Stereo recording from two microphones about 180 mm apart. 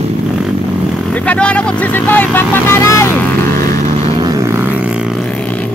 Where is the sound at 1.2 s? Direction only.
5° left (ahead or behind).